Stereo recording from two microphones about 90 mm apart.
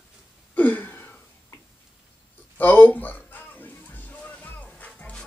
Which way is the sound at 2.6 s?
20° left (ahead or behind).